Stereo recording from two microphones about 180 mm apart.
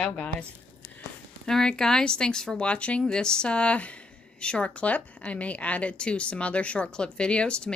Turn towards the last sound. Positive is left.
turn(degrees=5)  # may be behind; listen again after turning